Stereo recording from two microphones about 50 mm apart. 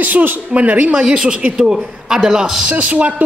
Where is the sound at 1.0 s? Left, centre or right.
Centre.